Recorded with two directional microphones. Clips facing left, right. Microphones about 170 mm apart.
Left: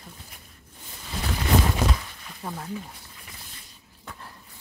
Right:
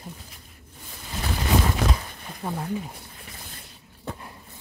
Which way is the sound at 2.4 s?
15° right (ahead or behind).